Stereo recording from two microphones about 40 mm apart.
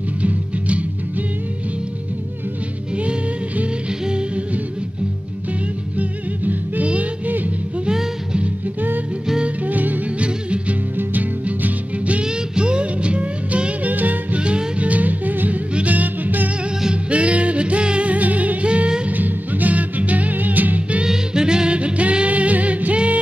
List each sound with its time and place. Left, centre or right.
0.2 s music: right
3.0 s music: right
5.9 s music: right
7.9 s music: centre
9.7 s music: right
10.1 s music: right
12.2 s music: right
13.9 s music: right
14.4 s music: right
16.9 s music: right
18.7 s music: right
19.0 s music: right
21.0 s music: centre; by 23.1 s right